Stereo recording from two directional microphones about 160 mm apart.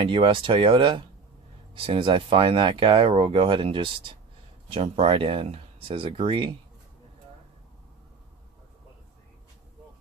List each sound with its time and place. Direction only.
0.0 s speech: 35° right (ahead or behind)